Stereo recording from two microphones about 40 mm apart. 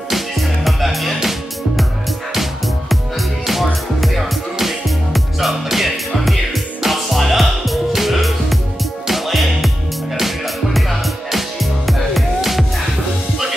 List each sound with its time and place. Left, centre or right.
0.1 s music: centre
2.3 s music: centre